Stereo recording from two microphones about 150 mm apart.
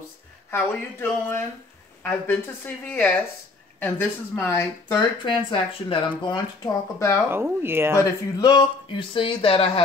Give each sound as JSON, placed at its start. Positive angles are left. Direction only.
{"t": 0.5, "sound": "a woman's voice", "side_deg": 15}
{"t": 5.2, "sound": "speech", "side_deg": 30}
{"t": 7.2, "sound": "speech", "side_deg": -15}
{"t": 8.0, "sound": "speech", "side_deg": 25}